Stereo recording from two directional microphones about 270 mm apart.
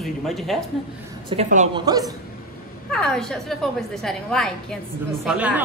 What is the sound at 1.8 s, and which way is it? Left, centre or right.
Speech, centre.